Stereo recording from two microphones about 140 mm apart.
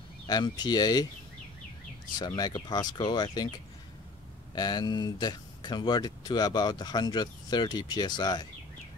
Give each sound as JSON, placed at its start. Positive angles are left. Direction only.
{"t": 0.3, "sound": "speech", "side_deg": 30}
{"t": 2.1, "sound": "speech", "side_deg": 30}